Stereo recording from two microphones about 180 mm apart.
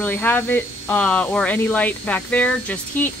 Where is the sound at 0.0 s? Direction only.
10° left (ahead or behind).